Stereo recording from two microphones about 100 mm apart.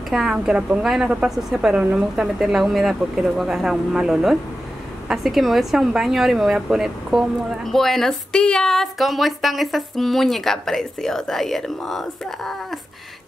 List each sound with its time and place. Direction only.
0.1 s speech: 5° right (ahead or behind)